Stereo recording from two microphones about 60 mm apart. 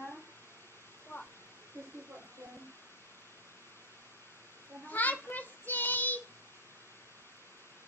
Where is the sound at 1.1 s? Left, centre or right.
Left.